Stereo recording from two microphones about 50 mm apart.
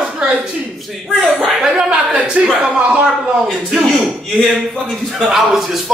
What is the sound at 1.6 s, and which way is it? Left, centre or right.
Speech, centre.